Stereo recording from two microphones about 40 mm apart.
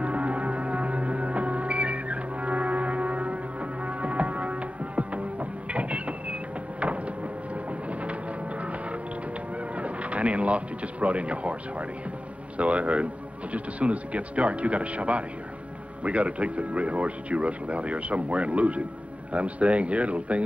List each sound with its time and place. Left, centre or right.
0.0 s music: right
8.0 s music: right
9.8 s speech: right
12.5 s speech: right